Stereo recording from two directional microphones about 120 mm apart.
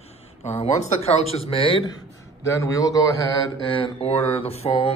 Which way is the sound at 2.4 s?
25° left (ahead or behind).